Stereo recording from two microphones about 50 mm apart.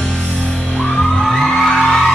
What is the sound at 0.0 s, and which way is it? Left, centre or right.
Music, left.